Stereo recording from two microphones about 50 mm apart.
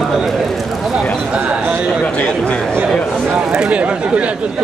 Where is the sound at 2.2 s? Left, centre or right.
Left.